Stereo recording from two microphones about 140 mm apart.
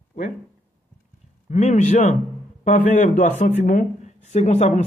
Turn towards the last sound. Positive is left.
turn(degrees=60)  # may be behind; listen again after turning